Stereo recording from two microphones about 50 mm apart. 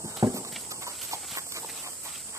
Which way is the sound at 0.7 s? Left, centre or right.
Right.